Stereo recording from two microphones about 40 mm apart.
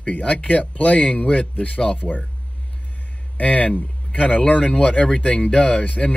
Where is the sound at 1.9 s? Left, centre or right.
Left.